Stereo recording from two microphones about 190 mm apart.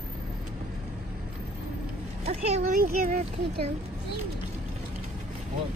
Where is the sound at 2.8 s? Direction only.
50° right (ahead or behind).